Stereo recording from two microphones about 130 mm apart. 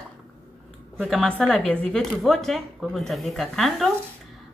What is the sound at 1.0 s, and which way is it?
A woman's voice, 5° left (ahead or behind).